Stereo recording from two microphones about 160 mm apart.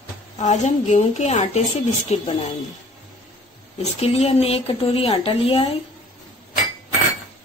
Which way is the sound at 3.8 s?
40° left (ahead or behind).